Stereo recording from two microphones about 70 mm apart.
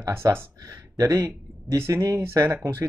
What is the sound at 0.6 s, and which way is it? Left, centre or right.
Speech, right.